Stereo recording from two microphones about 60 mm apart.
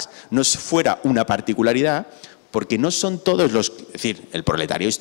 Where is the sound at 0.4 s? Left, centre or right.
Centre.